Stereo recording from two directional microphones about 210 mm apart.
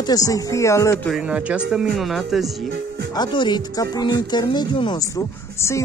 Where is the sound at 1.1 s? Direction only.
5° right (ahead or behind).